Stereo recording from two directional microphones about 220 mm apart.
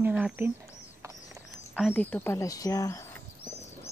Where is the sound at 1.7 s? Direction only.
5° left (ahead or behind).